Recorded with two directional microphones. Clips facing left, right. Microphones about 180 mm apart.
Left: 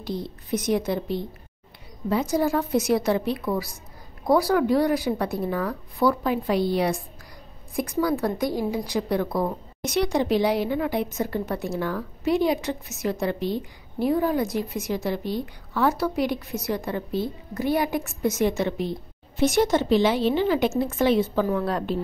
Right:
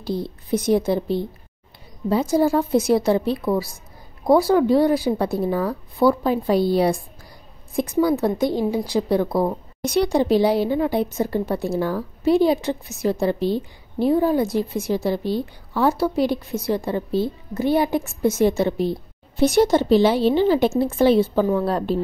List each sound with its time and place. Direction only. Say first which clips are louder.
0.5 s a woman's voice: right 5 dB; 30° right (ahead or behind)